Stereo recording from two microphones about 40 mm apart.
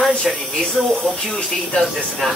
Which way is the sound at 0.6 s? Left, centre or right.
Left.